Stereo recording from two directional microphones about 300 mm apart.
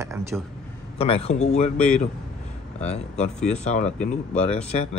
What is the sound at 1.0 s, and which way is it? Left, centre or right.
Speech, centre.